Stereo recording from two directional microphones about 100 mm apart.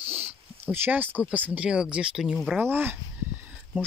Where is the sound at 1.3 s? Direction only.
15° right (ahead or behind).